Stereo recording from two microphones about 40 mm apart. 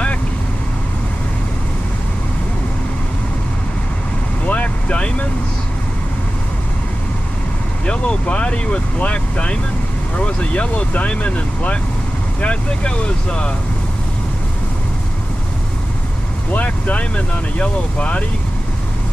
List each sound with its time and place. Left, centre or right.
4.5 s vehicle: left
7.8 s speech: left
16.5 s speech: left
17.1 s speech: left